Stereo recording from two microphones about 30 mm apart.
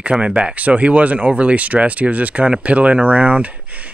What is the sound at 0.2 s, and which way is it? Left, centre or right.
Speech, right.